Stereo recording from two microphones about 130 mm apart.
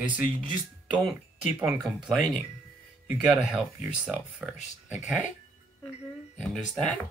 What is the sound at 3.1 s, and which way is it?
Speech, 10° right (ahead or behind).